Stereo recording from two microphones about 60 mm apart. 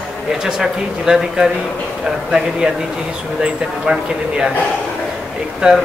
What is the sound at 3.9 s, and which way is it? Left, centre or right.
Speech, right.